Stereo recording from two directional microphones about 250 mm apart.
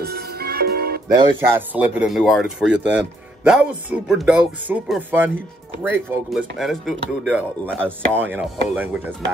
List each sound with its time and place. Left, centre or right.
0.0 s music: right
1.1 s speech: centre